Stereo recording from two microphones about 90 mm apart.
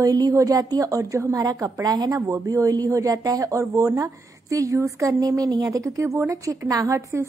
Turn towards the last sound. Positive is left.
turn(degrees=-35)  # may be behind; listen again after turning